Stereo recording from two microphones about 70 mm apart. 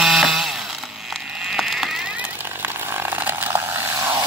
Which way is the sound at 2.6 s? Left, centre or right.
Right.